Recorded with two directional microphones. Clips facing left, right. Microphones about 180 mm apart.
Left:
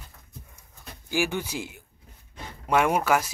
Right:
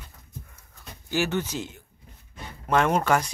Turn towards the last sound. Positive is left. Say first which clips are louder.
# even
turn(degrees=5)  # may be behind; listen again after turning